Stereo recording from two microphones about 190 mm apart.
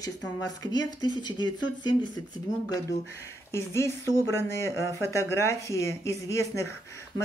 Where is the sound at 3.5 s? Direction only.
15° left (ahead or behind).